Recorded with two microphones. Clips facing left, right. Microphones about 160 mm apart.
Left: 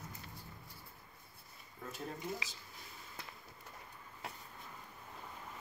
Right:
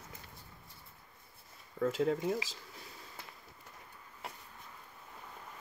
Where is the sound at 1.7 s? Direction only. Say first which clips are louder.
Right 15 dB; 90° right.